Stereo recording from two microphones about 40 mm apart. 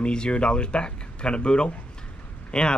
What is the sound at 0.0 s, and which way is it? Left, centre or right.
Speech, left.